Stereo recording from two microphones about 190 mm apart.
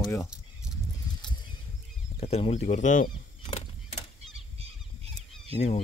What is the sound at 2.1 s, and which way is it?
Speech, 35° left (ahead or behind).